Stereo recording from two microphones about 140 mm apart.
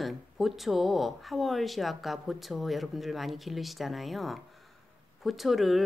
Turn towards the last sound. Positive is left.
turn(degrees=0)  # may be behind; listen again after turning